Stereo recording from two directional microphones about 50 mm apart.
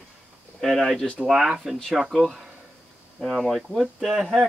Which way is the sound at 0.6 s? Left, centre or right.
Centre.